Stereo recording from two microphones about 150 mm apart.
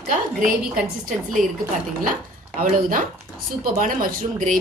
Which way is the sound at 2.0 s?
65° right (ahead or behind).